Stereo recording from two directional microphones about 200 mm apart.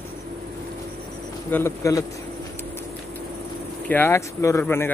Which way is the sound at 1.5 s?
15° left (ahead or behind).